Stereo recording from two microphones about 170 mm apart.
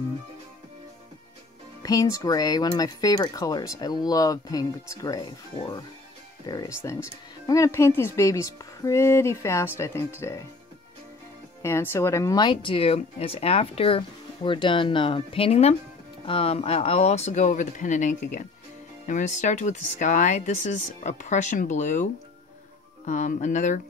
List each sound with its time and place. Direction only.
1.8 s speech: 20° left (ahead or behind)
6.4 s speech: 25° left (ahead or behind)
11.6 s speech: 15° left (ahead or behind); by 23.8 s 45° left (ahead or behind)